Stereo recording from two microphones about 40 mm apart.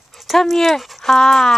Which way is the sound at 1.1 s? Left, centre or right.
Centre.